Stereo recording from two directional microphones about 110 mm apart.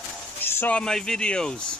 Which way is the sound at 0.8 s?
5° left (ahead or behind).